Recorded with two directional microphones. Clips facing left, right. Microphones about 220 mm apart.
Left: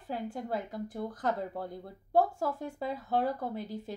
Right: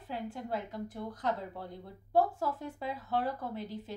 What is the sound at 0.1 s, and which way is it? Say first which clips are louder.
Speech: left 2 dB; 45° left (ahead or behind).